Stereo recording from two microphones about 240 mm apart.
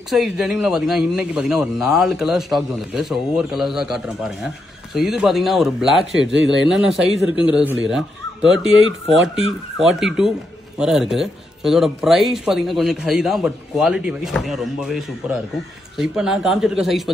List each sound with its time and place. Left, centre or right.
0.1 s speech: centre
6.2 s a man's voice: right
6.6 s speech: centre